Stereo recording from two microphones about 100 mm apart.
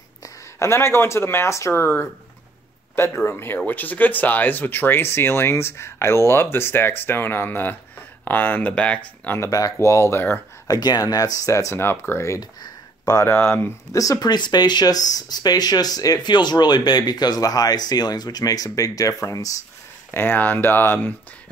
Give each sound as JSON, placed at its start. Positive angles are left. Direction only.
{"t": 0.2, "sound": "speech", "side_deg": 30}
{"t": 3.3, "sound": "speech", "side_deg": 25}
{"t": 9.4, "sound": "speech", "side_deg": 35}
{"t": 10.7, "sound": "speech", "side_deg": 40}
{"t": 13.3, "sound": "speech", "side_deg": 20}
{"t": 13.9, "sound": "speech", "side_deg": 35}
{"t": 20.2, "sound": "speech", "side_deg": 20}